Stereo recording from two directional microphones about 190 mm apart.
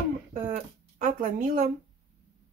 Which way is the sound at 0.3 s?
45° right (ahead or behind).